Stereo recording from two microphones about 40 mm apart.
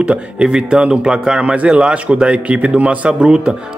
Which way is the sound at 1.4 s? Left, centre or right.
Right.